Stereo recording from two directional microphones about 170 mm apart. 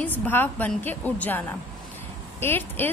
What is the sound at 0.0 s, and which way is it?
A woman's voice, 10° left (ahead or behind).